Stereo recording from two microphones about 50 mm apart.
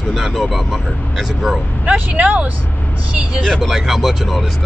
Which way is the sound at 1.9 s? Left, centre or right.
Right.